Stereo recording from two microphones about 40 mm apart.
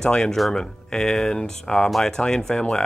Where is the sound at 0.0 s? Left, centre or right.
Centre.